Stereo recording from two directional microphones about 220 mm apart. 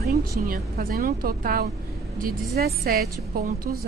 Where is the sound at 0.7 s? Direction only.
45° right (ahead or behind).